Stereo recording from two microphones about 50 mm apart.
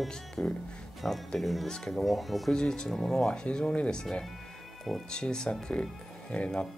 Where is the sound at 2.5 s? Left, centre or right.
Centre.